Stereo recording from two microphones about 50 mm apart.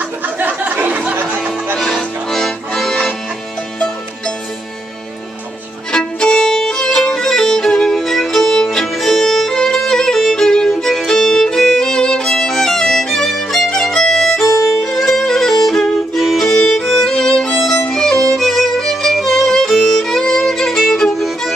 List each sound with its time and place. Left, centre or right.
0.4 s a sound: right
1.1 s music: right
2.3 s accordion: centre
5.9 s violin: centre
10.7 s music: centre
11.1 s violin: centre
16.4 s music: centre